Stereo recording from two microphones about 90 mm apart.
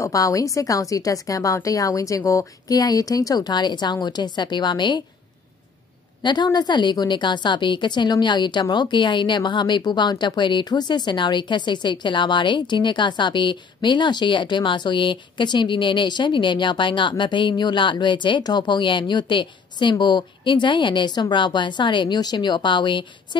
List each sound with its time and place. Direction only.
0.0 s a woman's voice: 40° left (ahead or behind); by 5.0 s 60° left (ahead or behind)
6.2 s a woman's voice: 55° left (ahead or behind)